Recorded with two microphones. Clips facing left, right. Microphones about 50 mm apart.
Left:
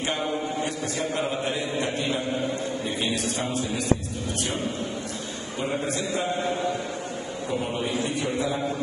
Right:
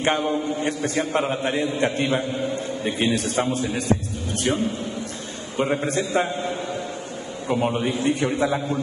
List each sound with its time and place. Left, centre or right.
0.0 s a man's voice: right
3.3 s a man's voice: right
5.6 s a man's voice: right
7.4 s a man's voice: right